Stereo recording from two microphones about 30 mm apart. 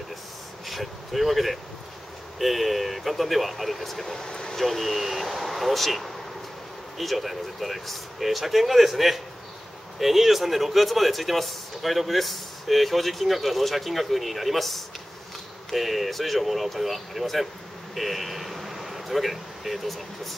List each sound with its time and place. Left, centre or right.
0.7 s a man's voice: centre
4.1 s speech: centre
4.6 s a man's voice: centre